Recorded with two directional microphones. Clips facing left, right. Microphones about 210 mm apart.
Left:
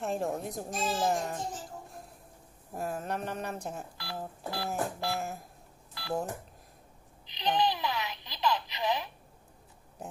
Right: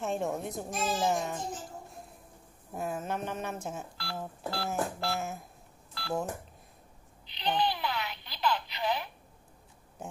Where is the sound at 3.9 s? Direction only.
15° left (ahead or behind).